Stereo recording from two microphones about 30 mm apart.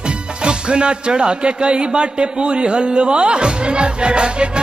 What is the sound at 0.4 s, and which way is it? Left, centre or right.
Speech, right.